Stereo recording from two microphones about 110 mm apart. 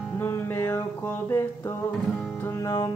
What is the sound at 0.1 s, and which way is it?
Music, 20° left (ahead or behind).